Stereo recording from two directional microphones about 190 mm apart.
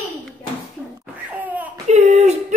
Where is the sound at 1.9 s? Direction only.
35° right (ahead or behind).